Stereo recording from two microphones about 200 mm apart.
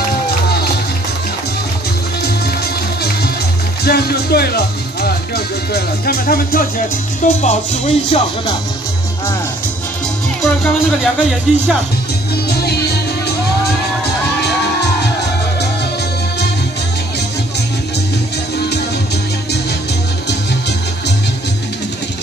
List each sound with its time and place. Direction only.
3.8 s music: 50° left (ahead or behind)
7.2 s speech: 35° left (ahead or behind)
10.6 s speech: centre (ahead or behind)
12.4 s music: 55° left (ahead or behind)